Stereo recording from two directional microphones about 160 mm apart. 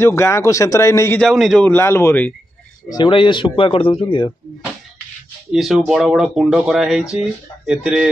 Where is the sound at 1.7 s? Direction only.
15° left (ahead or behind).